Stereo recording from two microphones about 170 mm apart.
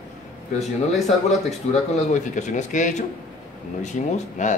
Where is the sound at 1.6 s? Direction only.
45° left (ahead or behind).